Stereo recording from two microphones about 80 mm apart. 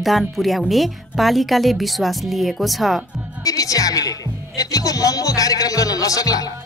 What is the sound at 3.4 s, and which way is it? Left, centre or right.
Speech, left.